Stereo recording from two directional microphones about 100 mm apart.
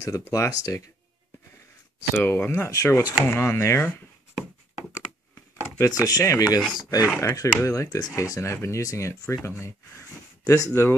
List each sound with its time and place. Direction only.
0.0 s speech: 30° left (ahead or behind)
2.1 s speech: 25° left (ahead or behind)
4.9 s computer keyboard: 25° left (ahead or behind)
5.9 s speech: 40° left (ahead or behind)